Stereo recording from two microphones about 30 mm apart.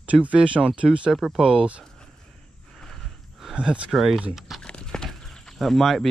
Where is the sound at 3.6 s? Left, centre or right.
Right.